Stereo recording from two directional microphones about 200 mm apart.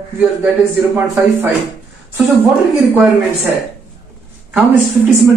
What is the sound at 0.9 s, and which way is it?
Speech, 10° right (ahead or behind).